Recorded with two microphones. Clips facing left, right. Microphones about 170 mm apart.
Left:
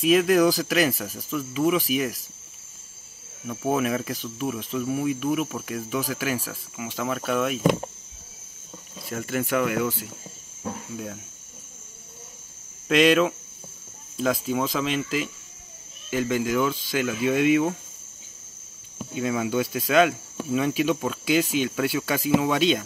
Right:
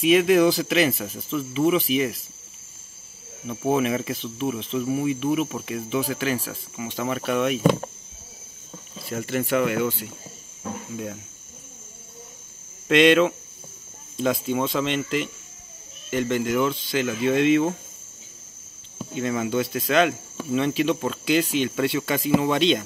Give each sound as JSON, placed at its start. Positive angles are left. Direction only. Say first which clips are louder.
{"t": 0.0, "sound": "speech", "louder": "right 1 dB", "side_deg": 0}
{"t": 3.4, "sound": "speech", "louder": "right 2 dB", "side_deg": 0}
{"t": 8.9, "sound": "speech", "louder": "right 2 dB", "side_deg": 0}
{"t": 12.8, "sound": "speech", "louder": "right 2 dB", "side_deg": 5}
{"t": 18.9, "sound": "speech", "louder": "even", "side_deg": 5}